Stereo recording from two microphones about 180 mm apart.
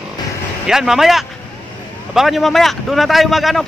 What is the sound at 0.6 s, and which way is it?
A man's voice, 5° right (ahead or behind).